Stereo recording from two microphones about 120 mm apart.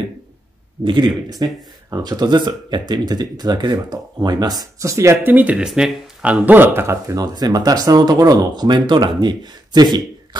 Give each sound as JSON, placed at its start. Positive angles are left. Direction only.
{"t": 0.8, "sound": "speech", "side_deg": -40}